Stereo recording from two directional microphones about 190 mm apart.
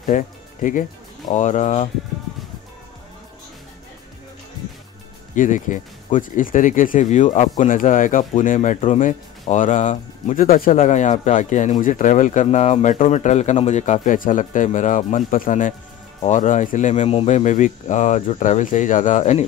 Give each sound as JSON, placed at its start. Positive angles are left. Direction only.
{"t": 0.0, "sound": "speech", "side_deg": 45}
{"t": 5.3, "sound": "speech", "side_deg": 40}